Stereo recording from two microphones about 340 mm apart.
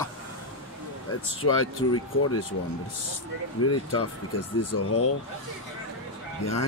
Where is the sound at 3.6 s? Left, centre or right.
Left.